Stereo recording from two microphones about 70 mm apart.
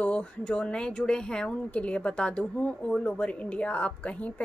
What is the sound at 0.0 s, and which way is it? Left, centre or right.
A woman's voice, centre.